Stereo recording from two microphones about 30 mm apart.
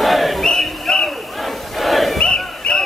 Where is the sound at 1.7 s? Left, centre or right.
Centre.